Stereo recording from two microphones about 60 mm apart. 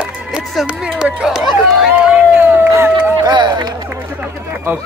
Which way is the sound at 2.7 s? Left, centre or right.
Right.